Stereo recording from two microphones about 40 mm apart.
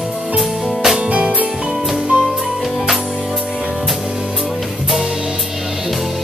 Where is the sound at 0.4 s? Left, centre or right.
Centre.